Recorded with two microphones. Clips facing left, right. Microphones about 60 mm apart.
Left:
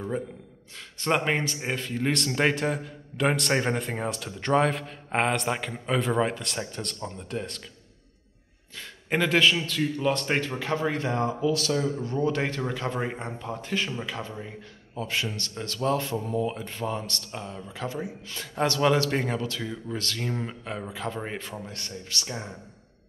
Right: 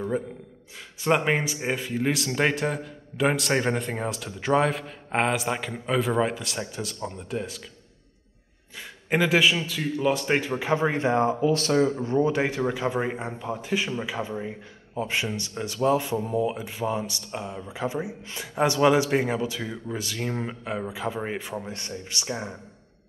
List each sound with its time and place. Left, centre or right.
0.7 s speech: centre
8.7 s speech: centre
10.5 s speech: centre
11.4 s speech: right; by 22.6 s centre